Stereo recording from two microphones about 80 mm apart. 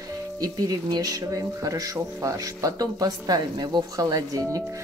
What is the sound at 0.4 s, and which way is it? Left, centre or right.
Speech, right.